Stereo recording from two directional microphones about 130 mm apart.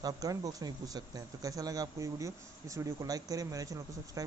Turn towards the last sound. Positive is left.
turn(degrees=-25)  # may be behind; listen again after turning